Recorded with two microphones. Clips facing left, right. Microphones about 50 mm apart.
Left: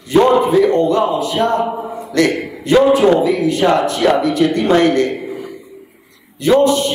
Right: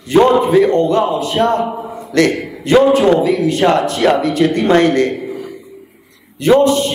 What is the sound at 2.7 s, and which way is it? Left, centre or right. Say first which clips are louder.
A man's voice: right 1 dB; right.